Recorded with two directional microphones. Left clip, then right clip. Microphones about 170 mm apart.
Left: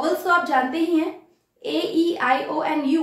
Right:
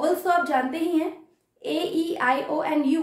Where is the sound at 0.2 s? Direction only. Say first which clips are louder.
Left 3 dB; 30° right (ahead or behind).